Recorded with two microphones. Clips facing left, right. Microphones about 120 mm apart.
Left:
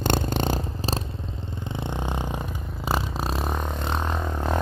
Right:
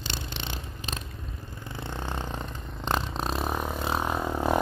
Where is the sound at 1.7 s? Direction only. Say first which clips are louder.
Left 5 dB; 20° left (ahead or behind).